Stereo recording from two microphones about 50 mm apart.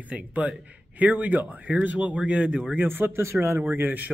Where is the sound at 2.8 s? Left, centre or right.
Right.